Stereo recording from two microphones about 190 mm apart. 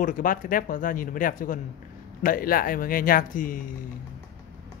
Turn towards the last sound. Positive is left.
turn(degrees=45)  # may be behind; listen again after turning